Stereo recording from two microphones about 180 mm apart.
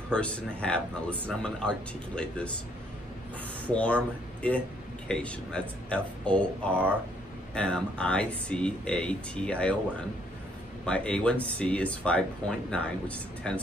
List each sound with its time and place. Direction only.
0.1 s speech: 5° left (ahead or behind)
3.6 s speech: 5° left (ahead or behind)